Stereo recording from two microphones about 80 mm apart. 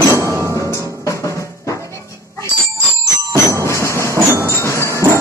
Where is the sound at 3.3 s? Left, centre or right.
Right.